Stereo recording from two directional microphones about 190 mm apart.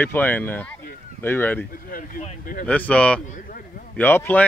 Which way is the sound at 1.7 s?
50° left (ahead or behind).